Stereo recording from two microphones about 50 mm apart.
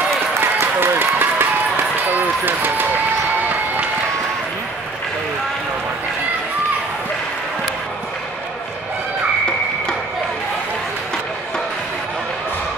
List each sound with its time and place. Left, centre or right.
0.7 s run: right